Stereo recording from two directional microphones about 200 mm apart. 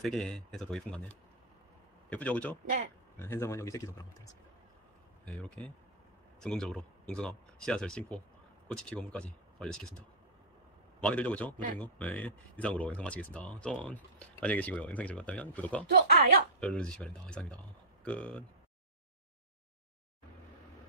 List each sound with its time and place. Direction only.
0.0 s speech: centre (ahead or behind)
5.2 s speech: 5° left (ahead or behind)
11.0 s speech: 5° left (ahead or behind)
15.9 s speech: 45° right (ahead or behind)
16.5 s speech: 5° left (ahead or behind)